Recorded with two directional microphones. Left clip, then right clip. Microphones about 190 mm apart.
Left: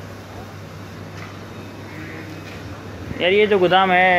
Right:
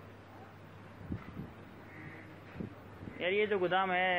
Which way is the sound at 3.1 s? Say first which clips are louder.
Left 16 dB; 10° left (ahead or behind).